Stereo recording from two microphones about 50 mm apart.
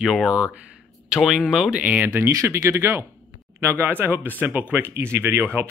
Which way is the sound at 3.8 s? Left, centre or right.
Right.